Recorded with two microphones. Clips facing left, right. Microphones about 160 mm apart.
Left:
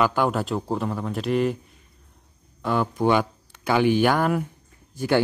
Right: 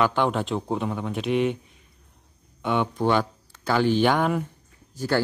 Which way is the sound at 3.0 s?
10° left (ahead or behind).